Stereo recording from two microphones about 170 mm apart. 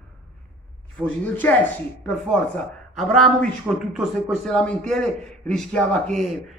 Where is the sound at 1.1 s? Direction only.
10° left (ahead or behind).